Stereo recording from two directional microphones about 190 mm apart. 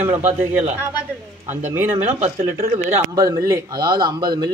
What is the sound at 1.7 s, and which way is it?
A man's voice, 10° right (ahead or behind).